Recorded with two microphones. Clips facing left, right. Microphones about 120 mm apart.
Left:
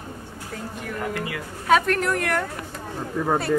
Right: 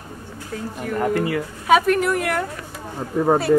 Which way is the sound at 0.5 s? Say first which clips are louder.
Right 5 dB; centre (ahead or behind).